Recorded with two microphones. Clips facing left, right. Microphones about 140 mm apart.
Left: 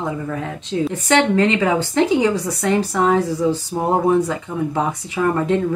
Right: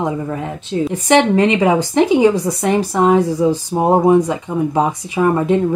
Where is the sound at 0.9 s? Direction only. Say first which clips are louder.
Right 4 dB; 15° right (ahead or behind).